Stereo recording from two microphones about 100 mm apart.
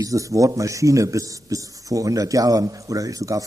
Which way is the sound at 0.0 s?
35° right (ahead or behind).